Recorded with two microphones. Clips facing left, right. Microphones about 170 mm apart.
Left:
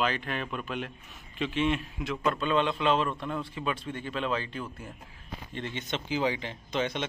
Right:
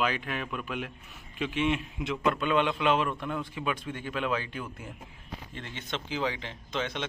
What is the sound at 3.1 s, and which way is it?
Speech, 15° left (ahead or behind).